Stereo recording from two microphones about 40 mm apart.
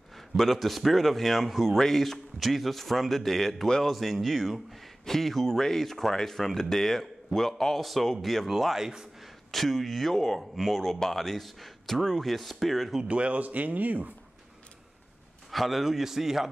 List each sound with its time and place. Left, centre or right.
0.4 s a man's voice: centre
8.7 s a man's voice: centre
9.5 s a man's voice: centre
13.1 s a man's voice: right
15.5 s a man's voice: centre